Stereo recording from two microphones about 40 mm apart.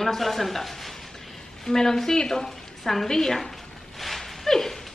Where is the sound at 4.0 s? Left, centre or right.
Centre.